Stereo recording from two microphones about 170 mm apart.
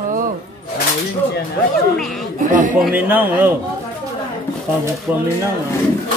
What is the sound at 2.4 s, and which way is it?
Speech, 50° right (ahead or behind).